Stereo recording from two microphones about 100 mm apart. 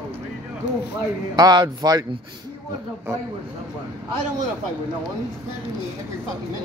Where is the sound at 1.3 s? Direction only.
45° right (ahead or behind).